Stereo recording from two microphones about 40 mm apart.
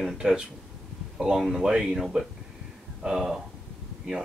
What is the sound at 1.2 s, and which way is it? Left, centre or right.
Speech, centre.